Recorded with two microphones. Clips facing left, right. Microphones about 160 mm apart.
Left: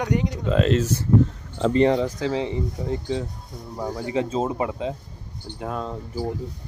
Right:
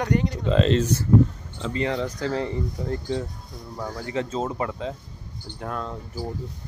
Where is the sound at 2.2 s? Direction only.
5° left (ahead or behind).